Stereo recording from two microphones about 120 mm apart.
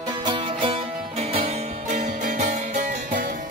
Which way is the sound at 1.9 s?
85° right.